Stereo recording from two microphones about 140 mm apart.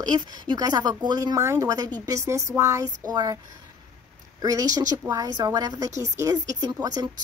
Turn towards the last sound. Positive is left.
turn(degrees=-30)  # may be behind; listen again after turning